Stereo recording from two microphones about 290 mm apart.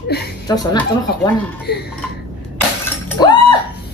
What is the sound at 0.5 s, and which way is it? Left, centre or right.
Speech, centre.